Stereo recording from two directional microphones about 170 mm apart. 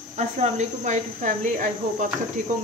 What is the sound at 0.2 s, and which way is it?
Speech, 45° right (ahead or behind).